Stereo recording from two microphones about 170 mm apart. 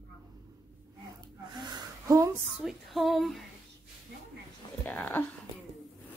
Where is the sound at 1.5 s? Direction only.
25° right (ahead or behind).